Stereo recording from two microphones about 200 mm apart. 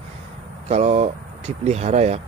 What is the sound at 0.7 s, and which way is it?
Speech, 35° right (ahead or behind).